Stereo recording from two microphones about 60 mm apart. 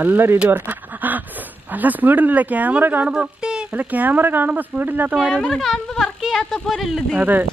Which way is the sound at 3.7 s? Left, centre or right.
Right.